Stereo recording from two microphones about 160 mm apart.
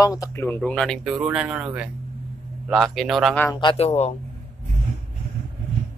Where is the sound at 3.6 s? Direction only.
35° left (ahead or behind).